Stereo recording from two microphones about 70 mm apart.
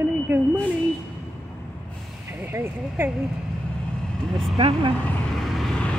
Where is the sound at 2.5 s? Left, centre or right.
Right.